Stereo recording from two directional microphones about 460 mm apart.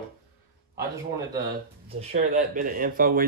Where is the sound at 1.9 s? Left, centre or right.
Centre.